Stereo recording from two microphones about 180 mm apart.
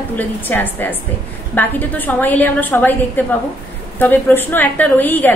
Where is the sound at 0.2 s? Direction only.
10° left (ahead or behind).